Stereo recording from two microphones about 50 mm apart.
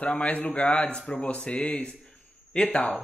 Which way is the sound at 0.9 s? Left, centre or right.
Centre.